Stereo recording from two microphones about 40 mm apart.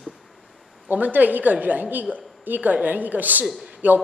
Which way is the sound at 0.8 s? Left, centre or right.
Right.